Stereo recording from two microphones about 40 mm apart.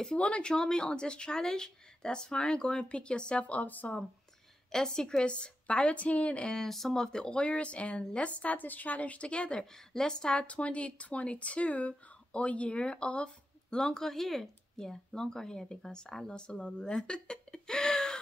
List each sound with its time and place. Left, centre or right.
0.1 s speech: left
4.6 s speech: centre; by 6.5 s left
6.5 s speech: centre; by 8.3 s left
8.3 s a woman's voice: left
9.7 s a woman's voice: centre
10.4 s speech: left